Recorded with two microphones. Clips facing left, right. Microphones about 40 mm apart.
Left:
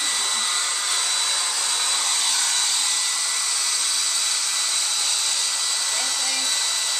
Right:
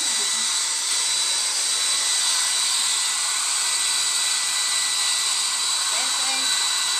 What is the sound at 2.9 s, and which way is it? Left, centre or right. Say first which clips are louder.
Hair dryer: even; right.